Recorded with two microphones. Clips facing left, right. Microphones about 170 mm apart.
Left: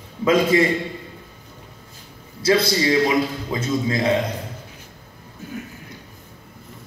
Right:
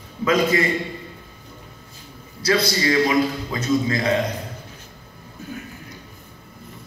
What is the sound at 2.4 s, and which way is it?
A man's voice, 25° left (ahead or behind).